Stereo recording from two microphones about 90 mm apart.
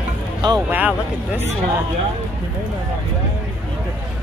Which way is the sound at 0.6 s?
20° right (ahead or behind).